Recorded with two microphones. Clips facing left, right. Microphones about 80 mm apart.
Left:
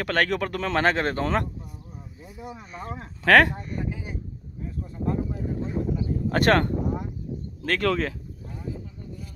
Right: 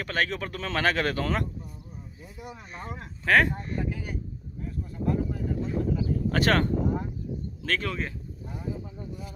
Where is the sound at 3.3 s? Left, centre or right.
Left.